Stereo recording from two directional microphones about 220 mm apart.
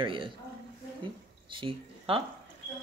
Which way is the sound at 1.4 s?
20° right (ahead or behind).